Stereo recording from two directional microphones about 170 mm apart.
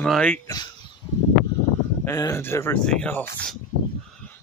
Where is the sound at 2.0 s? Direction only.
15° left (ahead or behind).